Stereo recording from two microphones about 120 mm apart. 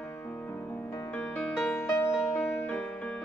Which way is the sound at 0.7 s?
20° left (ahead or behind).